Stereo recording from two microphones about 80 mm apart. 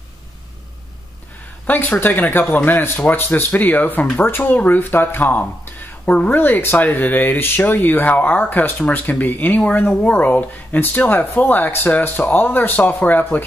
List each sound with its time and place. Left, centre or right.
1.7 s speech: left